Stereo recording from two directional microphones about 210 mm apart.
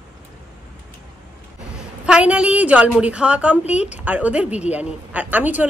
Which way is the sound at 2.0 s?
5° right (ahead or behind).